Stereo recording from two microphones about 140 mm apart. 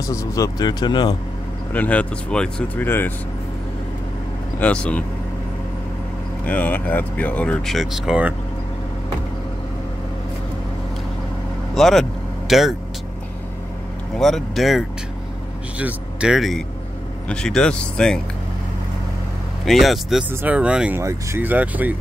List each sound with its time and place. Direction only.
0.0 s speech: 20° left (ahead or behind)
1.7 s speech: 10° left (ahead or behind)
4.6 s speech: 10° left (ahead or behind)
6.4 s speech: 10° left (ahead or behind); by 8.4 s 5° right (ahead or behind)
11.7 s vehicle: centre (ahead or behind)
14.1 s speech: centre (ahead or behind)
19.6 s speech: centre (ahead or behind)
21.0 s speech: 20° right (ahead or behind)